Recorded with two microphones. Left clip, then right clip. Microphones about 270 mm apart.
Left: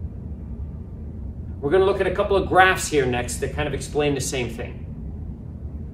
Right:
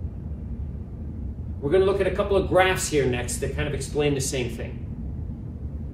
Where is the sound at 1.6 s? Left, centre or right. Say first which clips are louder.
Left 2 dB; centre.